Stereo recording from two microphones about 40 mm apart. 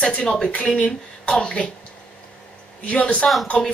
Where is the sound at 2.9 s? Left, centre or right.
Left.